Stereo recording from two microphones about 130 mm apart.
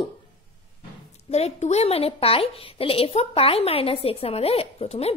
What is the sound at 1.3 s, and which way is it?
A woman's voice, 55° left (ahead or behind).